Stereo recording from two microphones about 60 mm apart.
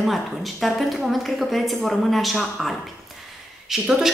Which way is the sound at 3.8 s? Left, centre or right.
Centre.